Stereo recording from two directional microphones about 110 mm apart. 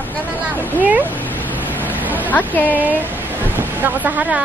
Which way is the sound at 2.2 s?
15° left (ahead or behind).